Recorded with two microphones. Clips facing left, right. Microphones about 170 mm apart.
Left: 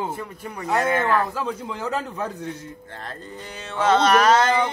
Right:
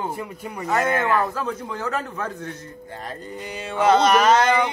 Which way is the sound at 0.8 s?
Centre (ahead or behind).